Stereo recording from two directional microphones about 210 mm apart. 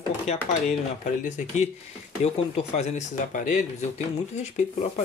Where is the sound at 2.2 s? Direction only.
30° left (ahead or behind).